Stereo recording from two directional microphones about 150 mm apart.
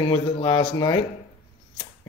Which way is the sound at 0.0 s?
35° left (ahead or behind).